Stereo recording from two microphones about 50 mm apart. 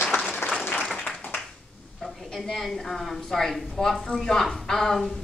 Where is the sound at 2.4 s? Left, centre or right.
Centre.